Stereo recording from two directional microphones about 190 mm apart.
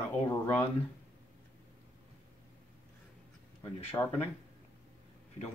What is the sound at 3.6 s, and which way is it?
Speech, 10° left (ahead or behind).